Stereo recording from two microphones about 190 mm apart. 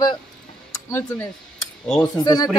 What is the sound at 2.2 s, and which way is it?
Speech, 20° left (ahead or behind).